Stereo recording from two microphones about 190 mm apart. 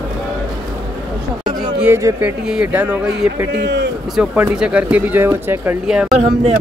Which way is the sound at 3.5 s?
65° right (ahead or behind).